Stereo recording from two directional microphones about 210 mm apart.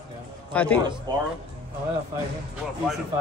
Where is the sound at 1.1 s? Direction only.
20° right (ahead or behind).